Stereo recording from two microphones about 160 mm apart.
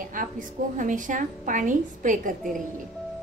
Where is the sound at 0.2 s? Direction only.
55° right (ahead or behind).